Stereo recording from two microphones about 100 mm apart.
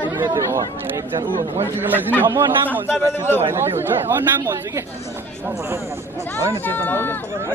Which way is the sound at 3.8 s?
25° right (ahead or behind).